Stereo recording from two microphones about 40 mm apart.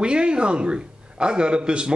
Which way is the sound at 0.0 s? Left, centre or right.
Right.